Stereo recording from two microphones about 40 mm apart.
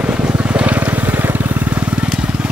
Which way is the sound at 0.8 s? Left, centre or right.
Right.